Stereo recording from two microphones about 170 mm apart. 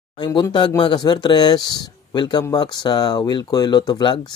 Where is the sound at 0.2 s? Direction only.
25° left (ahead or behind).